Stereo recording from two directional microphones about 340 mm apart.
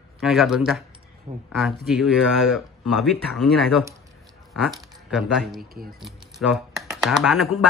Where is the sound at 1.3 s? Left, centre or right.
Right.